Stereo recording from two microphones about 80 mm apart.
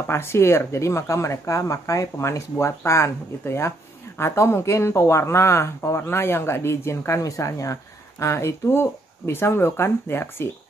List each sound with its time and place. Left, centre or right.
0.1 s speech: left